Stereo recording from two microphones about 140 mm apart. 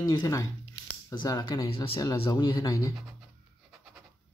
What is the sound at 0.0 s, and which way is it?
Speech, 30° left (ahead or behind).